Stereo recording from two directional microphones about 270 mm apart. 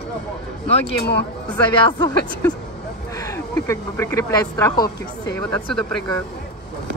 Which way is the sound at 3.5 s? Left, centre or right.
Centre.